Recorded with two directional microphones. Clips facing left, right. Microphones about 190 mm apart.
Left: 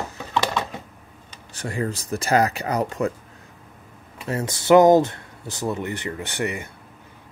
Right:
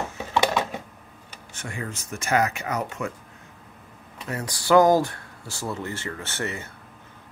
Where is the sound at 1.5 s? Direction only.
35° left (ahead or behind).